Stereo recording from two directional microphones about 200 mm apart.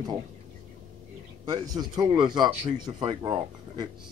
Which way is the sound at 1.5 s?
20° right (ahead or behind).